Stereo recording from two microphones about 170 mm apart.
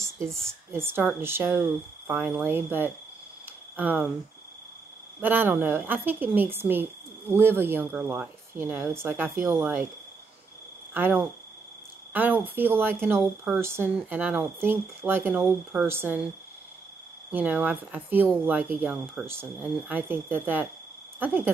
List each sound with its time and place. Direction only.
0.0 s a sound: 15° right (ahead or behind)
0.7 s a woman's voice: 15° right (ahead or behind)
3.4 s a sound: 10° right (ahead or behind)
5.2 s a woman's voice: 10° right (ahead or behind)
10.9 s a woman's voice: 10° right (ahead or behind)
17.3 s a woman's voice: 10° right (ahead or behind)